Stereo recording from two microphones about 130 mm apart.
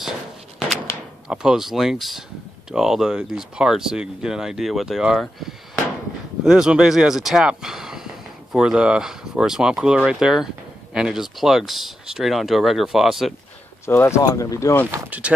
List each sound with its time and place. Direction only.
1.3 s speech: 5° right (ahead or behind)
13.8 s speech: 20° left (ahead or behind)
14.9 s speech: 10° right (ahead or behind)